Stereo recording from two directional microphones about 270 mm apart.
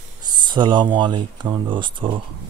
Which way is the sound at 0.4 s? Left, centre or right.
Centre.